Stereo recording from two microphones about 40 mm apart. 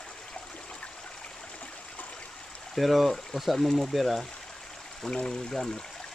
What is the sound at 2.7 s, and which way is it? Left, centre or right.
Speech, centre.